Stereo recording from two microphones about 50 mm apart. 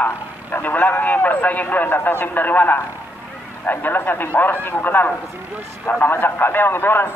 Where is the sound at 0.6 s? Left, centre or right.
Left.